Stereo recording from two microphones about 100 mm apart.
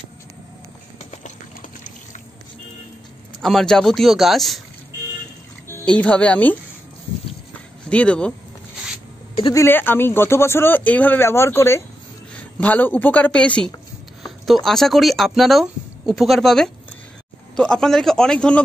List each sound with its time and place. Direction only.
3.4 s speech: 5° left (ahead or behind)
5.9 s speech: 15° left (ahead or behind)
7.9 s speech: 10° left (ahead or behind)
9.7 s speech: 20° left (ahead or behind)